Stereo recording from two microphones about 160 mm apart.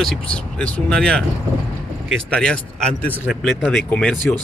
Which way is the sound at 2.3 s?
5° left (ahead or behind).